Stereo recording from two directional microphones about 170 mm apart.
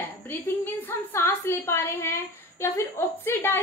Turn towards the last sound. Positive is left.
turn(degrees=10)  # may be behind; listen again after turning